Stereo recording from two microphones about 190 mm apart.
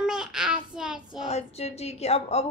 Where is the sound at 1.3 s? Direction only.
35° left (ahead or behind).